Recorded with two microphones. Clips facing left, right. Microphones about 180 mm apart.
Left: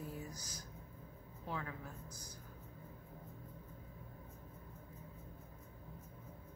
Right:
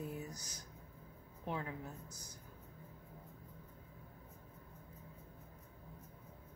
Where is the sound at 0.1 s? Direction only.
20° right (ahead or behind).